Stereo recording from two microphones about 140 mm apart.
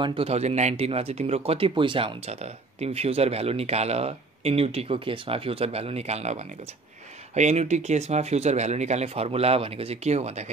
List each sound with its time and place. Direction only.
0.0 s speech: 40° right (ahead or behind)